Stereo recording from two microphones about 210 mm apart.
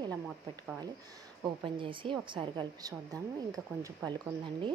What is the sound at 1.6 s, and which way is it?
A woman's voice, 25° right (ahead or behind).